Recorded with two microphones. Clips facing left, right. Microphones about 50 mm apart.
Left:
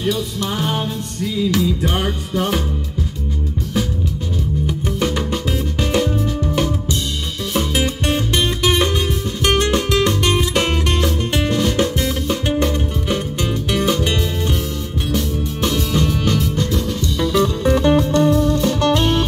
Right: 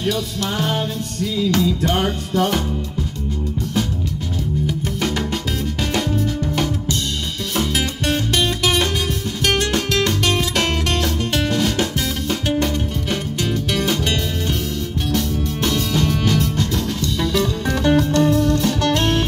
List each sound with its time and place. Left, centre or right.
0.0 s music: centre
4.6 s music: centre